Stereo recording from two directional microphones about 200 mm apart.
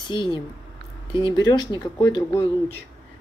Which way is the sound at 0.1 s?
20° left (ahead or behind).